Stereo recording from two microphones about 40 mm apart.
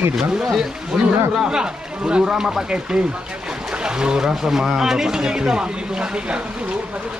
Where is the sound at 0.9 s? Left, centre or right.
Centre.